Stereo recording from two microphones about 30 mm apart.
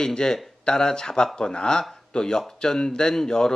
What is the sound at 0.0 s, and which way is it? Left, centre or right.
Speech, left.